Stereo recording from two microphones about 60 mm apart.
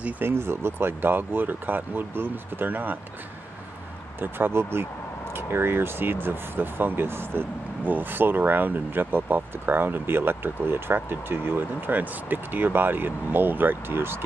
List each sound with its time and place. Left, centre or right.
0.2 s speech: right
4.2 s speech: right